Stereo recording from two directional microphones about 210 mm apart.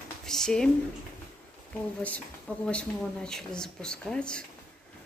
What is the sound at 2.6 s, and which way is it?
Speech, 5° left (ahead or behind).